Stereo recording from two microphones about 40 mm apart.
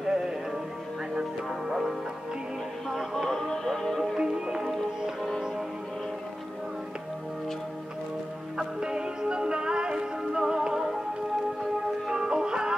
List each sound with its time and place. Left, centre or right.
0.1 s music: centre
1.7 s music: centre
3.3 s music: centre
4.2 s music: centre
8.5 s music: centre
12.1 s music: centre